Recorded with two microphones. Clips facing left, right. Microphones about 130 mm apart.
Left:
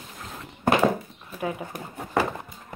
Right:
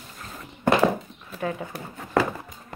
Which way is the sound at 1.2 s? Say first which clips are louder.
Right 1 dB; 10° left (ahead or behind).